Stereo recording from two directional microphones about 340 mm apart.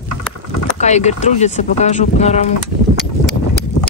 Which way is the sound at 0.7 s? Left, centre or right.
Centre.